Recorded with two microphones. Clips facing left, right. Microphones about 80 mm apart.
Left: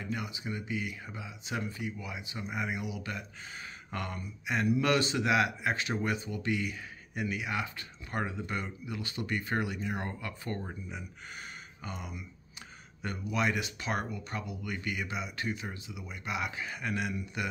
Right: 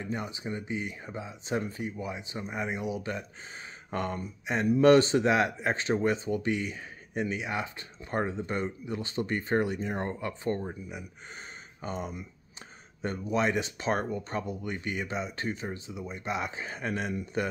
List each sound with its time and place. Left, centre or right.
0.0 s speech: right
11.8 s speech: right